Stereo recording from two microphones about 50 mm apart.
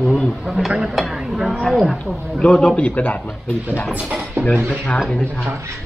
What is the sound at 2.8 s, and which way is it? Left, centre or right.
Speech, left.